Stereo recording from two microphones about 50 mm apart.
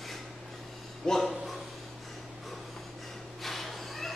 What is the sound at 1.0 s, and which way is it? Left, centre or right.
Speech, centre.